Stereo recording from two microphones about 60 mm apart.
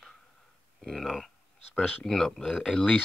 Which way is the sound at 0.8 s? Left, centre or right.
Centre.